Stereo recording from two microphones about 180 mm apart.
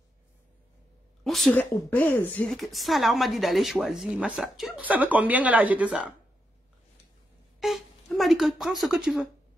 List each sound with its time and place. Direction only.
1.2 s speech: centre (ahead or behind)
7.6 s a woman's voice: centre (ahead or behind)